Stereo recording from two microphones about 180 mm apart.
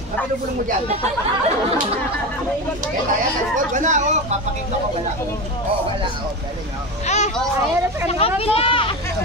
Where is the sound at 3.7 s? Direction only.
40° right (ahead or behind).